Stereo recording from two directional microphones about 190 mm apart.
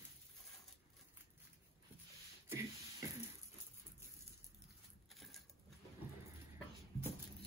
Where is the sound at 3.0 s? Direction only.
15° right (ahead or behind).